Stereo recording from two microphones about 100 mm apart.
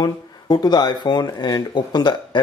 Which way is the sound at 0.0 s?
45° left (ahead or behind).